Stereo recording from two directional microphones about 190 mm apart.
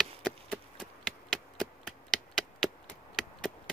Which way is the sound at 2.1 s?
Centre (ahead or behind).